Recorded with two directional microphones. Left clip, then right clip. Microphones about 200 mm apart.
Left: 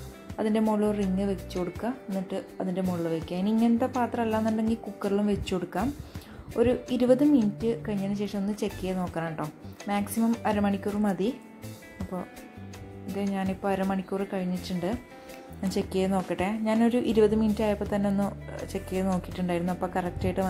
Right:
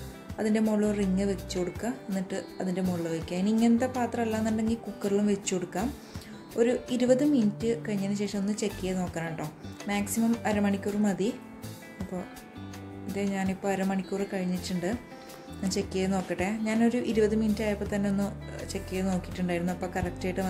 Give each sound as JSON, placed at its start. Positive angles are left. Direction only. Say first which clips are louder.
{"t": 0.4, "sound": "speech", "louder": "left 1 dB", "side_deg": 10}
{"t": 13.2, "sound": "speech", "louder": "left 1 dB", "side_deg": 15}
{"t": 19.6, "sound": "speech", "louder": "left 3 dB", "side_deg": 0}
{"t": 19.9, "sound": "speech", "louder": "left 2 dB", "side_deg": 15}